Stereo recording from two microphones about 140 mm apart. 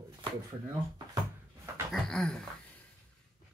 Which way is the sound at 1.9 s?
Centre (ahead or behind).